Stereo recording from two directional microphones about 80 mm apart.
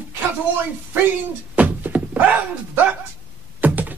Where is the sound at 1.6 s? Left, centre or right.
Centre.